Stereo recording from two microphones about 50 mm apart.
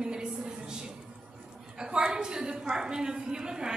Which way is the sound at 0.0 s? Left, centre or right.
Centre.